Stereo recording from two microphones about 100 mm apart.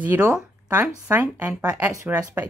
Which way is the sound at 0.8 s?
20° right (ahead or behind).